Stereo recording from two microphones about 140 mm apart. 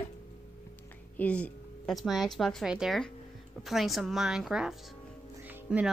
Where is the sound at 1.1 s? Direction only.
10° left (ahead or behind).